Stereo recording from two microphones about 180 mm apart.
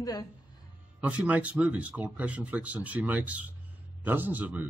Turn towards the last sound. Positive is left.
turn(degrees=-10)  # may be behind; listen again after turning